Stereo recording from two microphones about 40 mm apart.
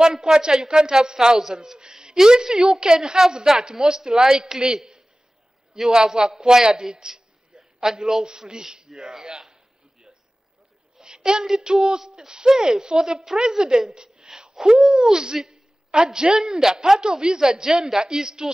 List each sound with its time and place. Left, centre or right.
0.0 s speech: centre
1.7 s a sound: centre
2.1 s a man's voice: centre
11.0 s a sound: centre
11.5 s a woman's voice: centre
15.9 s a woman's voice: right